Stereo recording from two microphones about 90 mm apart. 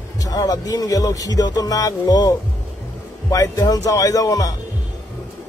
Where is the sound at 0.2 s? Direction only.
45° left (ahead or behind).